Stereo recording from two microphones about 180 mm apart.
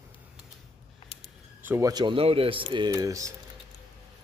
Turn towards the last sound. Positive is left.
turn(degrees=-20)  # may be behind; listen again after turning